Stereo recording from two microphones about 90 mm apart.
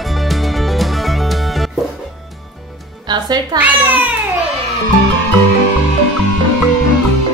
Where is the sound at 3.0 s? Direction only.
50° right (ahead or behind).